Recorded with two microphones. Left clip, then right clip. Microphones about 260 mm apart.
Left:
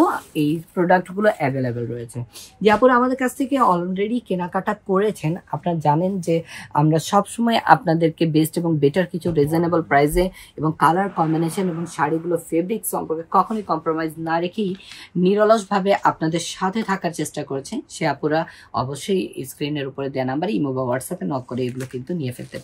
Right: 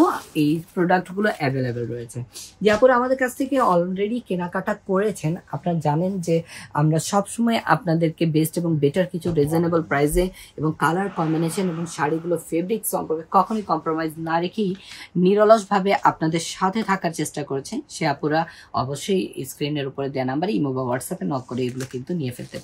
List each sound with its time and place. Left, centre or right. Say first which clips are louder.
0.0 s speech: even; centre
2.8 s speech: left 1 dB; left
7.0 s speech: left 3 dB; left; by 22.6 s centre